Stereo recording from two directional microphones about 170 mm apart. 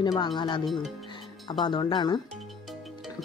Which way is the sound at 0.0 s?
25° left (ahead or behind).